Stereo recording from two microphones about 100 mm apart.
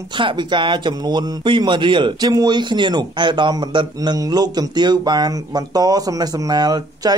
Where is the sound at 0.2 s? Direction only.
50° right (ahead or behind).